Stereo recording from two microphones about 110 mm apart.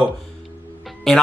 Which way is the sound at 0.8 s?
Centre (ahead or behind).